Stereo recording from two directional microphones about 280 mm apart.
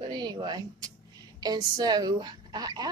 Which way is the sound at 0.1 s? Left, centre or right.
Centre.